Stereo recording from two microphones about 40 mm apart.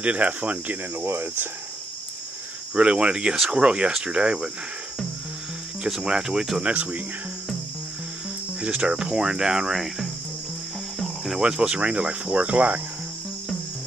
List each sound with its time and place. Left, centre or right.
0.0 s speech: right
0.9 s speech: right
2.7 s speech: right
5.9 s cricket: centre
6.6 s speech: right
8.5 s speech: right
8.9 s cricket: centre
11.4 s speech: right